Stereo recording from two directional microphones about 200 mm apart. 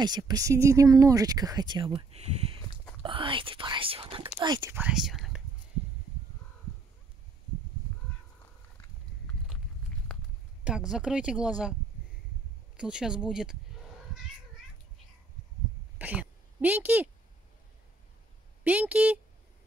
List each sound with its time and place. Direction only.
0.0 s speech: 20° right (ahead or behind)
4.7 s speech: 5° right (ahead or behind)
10.9 s speech: 5° right (ahead or behind)
12.7 s speech: 5° right (ahead or behind)
16.0 s speech: 10° right (ahead or behind)
18.6 s speech: 5° right (ahead or behind)